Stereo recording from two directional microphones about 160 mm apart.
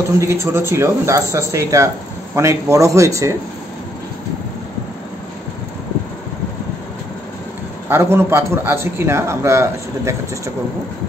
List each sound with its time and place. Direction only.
0.2 s a man's voice: 15° right (ahead or behind)
7.9 s a man's voice: 15° right (ahead or behind)